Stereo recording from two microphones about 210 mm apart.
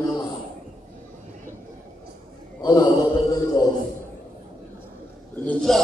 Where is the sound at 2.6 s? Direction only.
20° left (ahead or behind).